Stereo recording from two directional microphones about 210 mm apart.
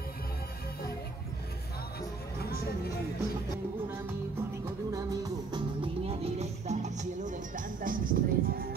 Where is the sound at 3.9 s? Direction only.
10° right (ahead or behind); by 8.1 s 40° right (ahead or behind).